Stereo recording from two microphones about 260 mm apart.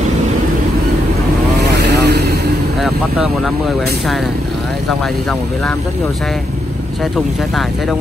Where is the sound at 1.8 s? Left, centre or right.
Right.